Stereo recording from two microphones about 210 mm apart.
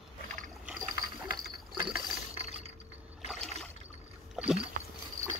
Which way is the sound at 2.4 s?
30° right (ahead or behind).